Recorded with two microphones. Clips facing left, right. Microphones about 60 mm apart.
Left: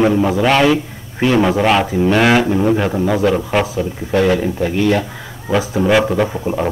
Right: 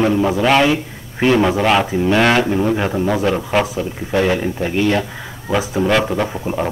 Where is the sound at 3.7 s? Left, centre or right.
Right.